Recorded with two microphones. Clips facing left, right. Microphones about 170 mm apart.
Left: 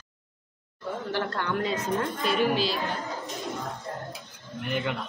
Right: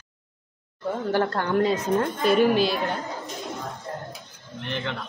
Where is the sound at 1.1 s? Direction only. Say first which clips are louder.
Right 6 dB; 45° right (ahead or behind).